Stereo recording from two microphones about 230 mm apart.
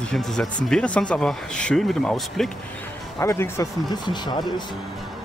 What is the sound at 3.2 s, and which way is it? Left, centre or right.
Speech, centre.